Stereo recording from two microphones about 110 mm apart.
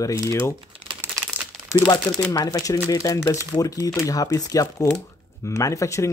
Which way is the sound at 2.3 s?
35° left (ahead or behind).